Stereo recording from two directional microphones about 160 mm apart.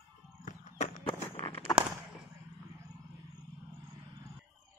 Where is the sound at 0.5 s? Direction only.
50° left (ahead or behind).